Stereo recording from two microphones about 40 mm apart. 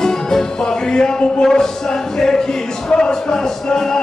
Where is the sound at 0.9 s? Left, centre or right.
Centre.